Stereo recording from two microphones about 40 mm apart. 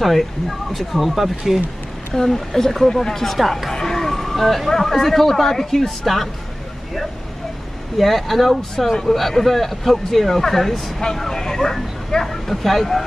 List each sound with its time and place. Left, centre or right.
0.0 s speech: centre
2.1 s speech: centre
8.0 s speech: centre